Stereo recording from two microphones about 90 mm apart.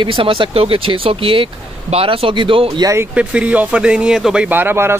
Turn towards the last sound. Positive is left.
turn(degrees=-30)  # may be behind; listen again after turning